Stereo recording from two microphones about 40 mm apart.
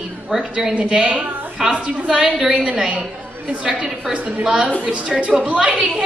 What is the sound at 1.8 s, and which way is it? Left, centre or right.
Speech, right.